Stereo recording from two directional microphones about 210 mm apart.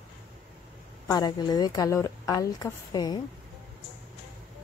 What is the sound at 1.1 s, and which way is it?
A woman's voice, 20° left (ahead or behind).